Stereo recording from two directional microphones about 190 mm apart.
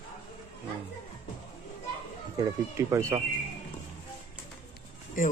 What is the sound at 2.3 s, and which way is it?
Speech, 15° right (ahead or behind).